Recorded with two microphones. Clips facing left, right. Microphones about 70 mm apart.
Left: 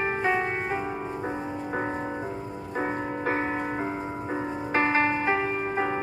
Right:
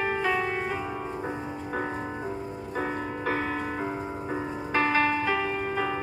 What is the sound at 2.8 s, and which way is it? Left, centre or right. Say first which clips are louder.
Music: left 2 dB; left.